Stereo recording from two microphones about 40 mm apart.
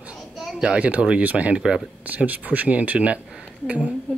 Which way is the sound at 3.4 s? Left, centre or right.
Right.